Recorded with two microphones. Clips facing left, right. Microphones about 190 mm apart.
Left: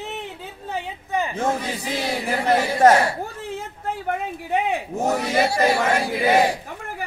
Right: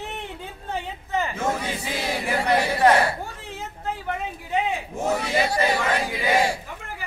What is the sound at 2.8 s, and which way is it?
Speech, 45° left (ahead or behind).